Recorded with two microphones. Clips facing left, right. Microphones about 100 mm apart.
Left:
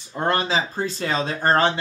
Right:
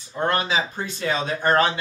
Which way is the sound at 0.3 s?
30° left (ahead or behind).